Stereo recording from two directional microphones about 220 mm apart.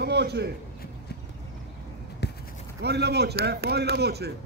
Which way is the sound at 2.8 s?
50° right (ahead or behind).